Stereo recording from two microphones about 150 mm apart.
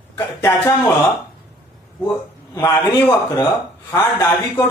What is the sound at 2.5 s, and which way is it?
Speech, 20° left (ahead or behind).